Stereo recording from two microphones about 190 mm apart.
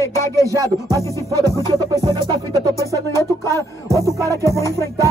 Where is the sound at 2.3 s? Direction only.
20° right (ahead or behind).